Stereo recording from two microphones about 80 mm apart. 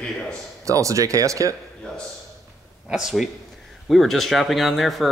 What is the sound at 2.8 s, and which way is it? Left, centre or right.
Speech, centre.